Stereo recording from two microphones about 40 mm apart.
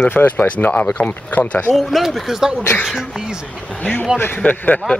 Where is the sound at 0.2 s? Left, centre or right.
Left.